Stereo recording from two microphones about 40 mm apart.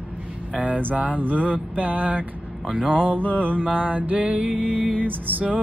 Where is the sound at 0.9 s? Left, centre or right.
Right.